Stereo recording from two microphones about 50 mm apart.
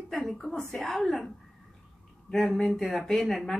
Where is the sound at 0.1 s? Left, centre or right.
Centre.